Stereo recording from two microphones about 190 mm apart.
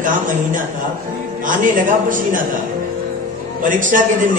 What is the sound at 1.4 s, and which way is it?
A man's voice, 45° right (ahead or behind).